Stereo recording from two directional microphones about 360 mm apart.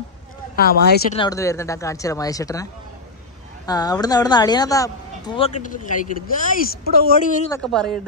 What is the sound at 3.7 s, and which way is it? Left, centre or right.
Speech, centre.